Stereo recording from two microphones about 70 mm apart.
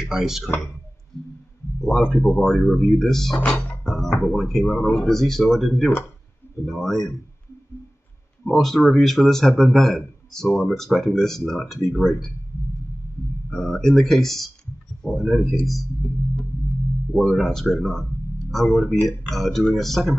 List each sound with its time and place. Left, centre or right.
0.0 s speech: centre
1.8 s a man's voice: centre
3.5 s music: left
3.8 s a man's voice: centre
8.5 s a man's voice: centre
13.5 s a man's voice: centre
17.1 s a man's voice: centre